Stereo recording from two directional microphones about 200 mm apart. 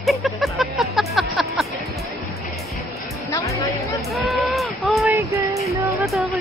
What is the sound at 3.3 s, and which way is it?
Music, 15° left (ahead or behind).